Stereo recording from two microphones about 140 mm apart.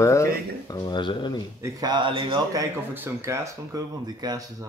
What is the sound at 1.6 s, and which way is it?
A man's voice, 30° right (ahead or behind).